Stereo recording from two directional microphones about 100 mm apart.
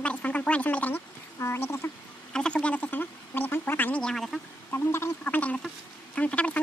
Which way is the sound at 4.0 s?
5° left (ahead or behind).